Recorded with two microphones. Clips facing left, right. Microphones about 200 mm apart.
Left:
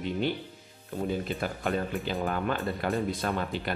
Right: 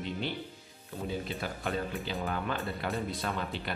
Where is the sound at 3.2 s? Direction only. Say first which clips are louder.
Left 4 dB; 50° left (ahead or behind).